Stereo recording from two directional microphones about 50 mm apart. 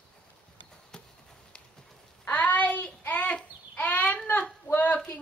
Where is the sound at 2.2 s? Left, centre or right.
Left.